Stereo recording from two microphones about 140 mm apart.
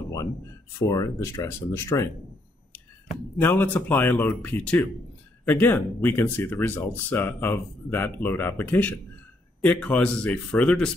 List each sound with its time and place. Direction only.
0.7 s speech: 20° left (ahead or behind)
3.3 s speech: 15° left (ahead or behind)